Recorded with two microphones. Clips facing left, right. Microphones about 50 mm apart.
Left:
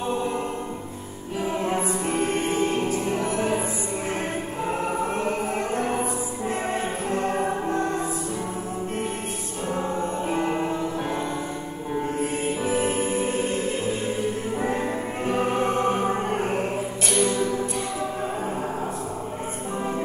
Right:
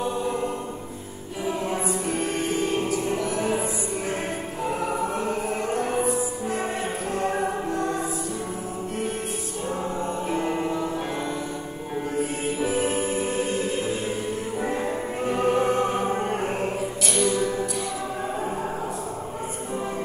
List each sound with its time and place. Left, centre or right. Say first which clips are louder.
1.4 s music: left 1 dB; left
5.0 s music: left 1 dB; left
7.7 s music: left 1 dB; left
10.3 s music: left 1 dB; left
12.6 s music: even; left
15.2 s music: right 2 dB; left
17.1 s music: left 1 dB; left